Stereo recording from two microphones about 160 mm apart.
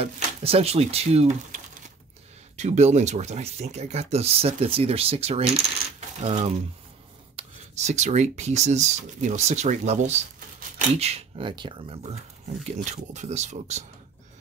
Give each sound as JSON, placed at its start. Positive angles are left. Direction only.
{"t": 0.0, "sound": "speech", "side_deg": -40}
{"t": 5.9, "sound": "coin", "side_deg": -45}
{"t": 7.3, "sound": "speech", "side_deg": -45}
{"t": 12.7, "sound": "speech", "side_deg": -45}